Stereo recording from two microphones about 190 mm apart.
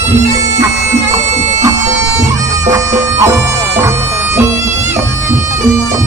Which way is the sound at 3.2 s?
15° right (ahead or behind).